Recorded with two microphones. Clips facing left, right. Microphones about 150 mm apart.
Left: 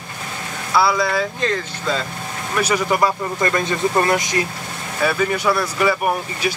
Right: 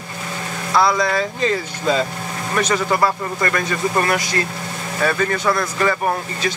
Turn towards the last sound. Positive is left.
turn(degrees=10)  # may be behind; listen again after turning